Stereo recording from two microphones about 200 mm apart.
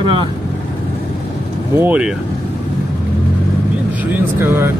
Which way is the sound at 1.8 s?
5° right (ahead or behind).